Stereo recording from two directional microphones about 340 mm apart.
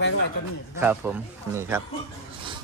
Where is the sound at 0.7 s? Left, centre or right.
Centre.